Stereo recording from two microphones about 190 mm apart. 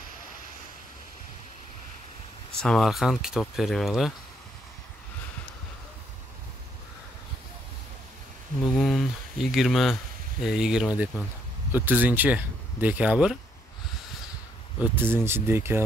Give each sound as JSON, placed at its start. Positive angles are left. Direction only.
{"t": 2.6, "sound": "speech", "side_deg": 0}
{"t": 8.7, "sound": "speech", "side_deg": 0}
{"t": 14.8, "sound": "speech", "side_deg": -10}